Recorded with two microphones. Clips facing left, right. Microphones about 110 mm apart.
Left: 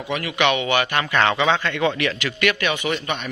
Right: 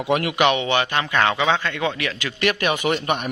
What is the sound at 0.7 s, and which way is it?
Speech, 25° right (ahead or behind).